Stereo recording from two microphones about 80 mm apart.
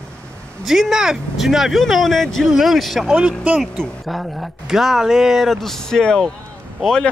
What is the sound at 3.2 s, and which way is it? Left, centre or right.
Speech, centre.